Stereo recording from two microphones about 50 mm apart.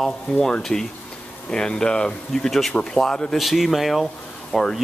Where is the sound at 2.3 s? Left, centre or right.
Centre.